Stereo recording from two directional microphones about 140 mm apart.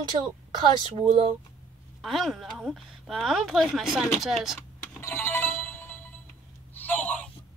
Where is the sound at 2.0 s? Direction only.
Centre (ahead or behind).